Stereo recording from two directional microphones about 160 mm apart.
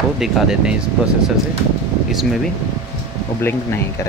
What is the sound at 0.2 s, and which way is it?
Speech, 5° right (ahead or behind).